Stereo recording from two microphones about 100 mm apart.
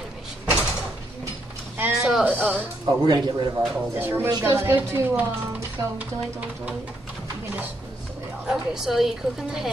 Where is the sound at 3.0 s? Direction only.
45° right (ahead or behind).